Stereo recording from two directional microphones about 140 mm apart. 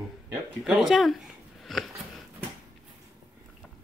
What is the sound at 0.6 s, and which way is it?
Speech, 5° right (ahead or behind).